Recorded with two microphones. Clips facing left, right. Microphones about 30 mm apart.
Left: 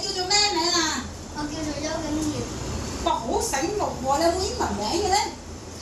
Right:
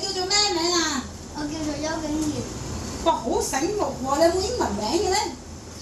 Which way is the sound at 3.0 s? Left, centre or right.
Centre.